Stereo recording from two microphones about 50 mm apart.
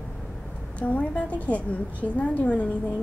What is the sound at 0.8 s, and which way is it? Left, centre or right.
A woman's voice, left.